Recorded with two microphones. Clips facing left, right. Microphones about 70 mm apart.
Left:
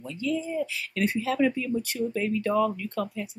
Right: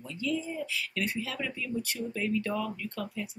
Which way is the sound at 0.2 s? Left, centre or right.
Left.